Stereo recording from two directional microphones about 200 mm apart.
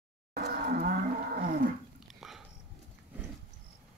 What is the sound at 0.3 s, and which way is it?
Roar, 55° right (ahead or behind).